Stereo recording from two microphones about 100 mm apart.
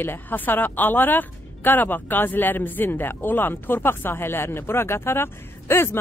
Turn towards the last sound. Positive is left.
turn(degrees=25)  # may be behind; listen again after turning